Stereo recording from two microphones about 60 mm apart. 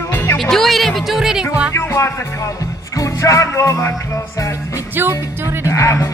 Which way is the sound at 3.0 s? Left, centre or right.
Left.